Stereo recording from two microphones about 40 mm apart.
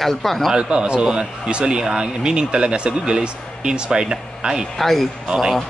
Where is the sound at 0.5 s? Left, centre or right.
Right.